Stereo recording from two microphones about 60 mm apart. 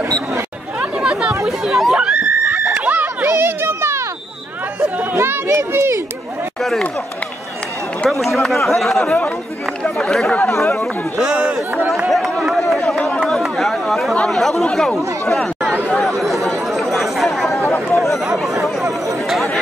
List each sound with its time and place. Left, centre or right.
0.7 s chatter: centre
1.4 s chatter: centre
2.1 s a sound: right
3.3 s children playing: right
5.1 s a sound: right
8.1 s speech: centre
12.0 s a sound: centre
13.3 s chatter: centre
14.3 s speech: centre
16.4 s chatter: centre
17.9 s a sound: centre
19.2 s speech: centre